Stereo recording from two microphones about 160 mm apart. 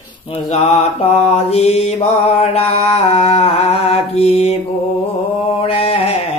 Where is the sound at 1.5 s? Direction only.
40° left (ahead or behind).